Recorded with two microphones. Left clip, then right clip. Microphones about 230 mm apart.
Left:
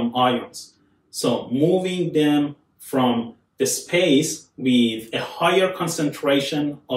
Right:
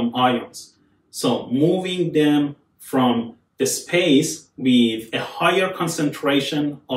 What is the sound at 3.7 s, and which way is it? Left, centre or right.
Speech, centre.